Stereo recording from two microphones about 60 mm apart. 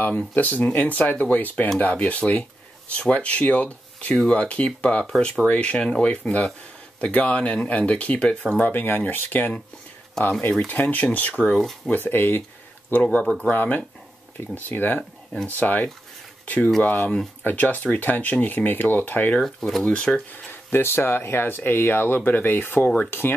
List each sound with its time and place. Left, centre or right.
0.1 s speech: centre
0.4 s speech: left
4.1 s speech: centre
8.5 s speech: left
10.2 s speech: centre
10.7 s speech: left
11.5 s speech: centre
11.9 s speech: left
13.0 s speech: centre
13.5 s speech: left
19.4 s speech: centre
19.8 s speech: centre
20.7 s speech: left